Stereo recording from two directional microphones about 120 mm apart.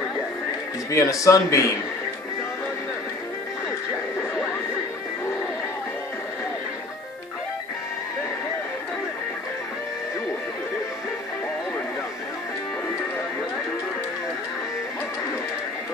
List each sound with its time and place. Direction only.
0.8 s speech: 25° left (ahead or behind)